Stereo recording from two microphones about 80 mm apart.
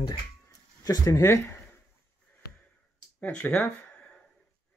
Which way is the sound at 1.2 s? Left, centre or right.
Left.